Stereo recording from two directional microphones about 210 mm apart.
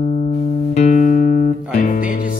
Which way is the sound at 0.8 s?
40° left (ahead or behind).